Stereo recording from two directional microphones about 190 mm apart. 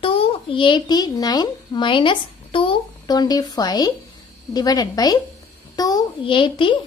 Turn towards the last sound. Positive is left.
turn(degrees=25)  # may be behind; listen again after turning